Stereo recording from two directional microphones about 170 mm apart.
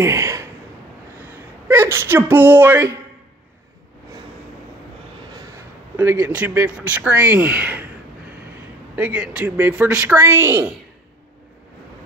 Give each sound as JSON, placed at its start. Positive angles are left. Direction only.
{"t": 0.0, "sound": "a sound", "side_deg": -15}
{"t": 1.7, "sound": "speech", "side_deg": -15}
{"t": 5.9, "sound": "speech", "side_deg": -10}
{"t": 8.9, "sound": "speech", "side_deg": -10}